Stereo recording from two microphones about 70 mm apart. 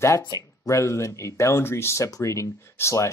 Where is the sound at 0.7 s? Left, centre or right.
Left.